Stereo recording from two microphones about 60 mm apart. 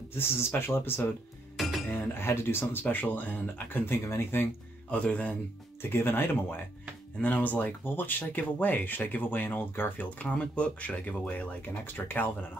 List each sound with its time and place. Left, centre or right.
0.6 s speech: left
1.6 s cutlery: centre
1.9 s speech: left
4.9 s speech: left
5.8 s speech: left
7.2 s speech: left
11.8 s speech: left